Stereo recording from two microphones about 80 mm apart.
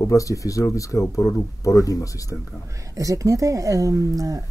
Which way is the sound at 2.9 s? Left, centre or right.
Right.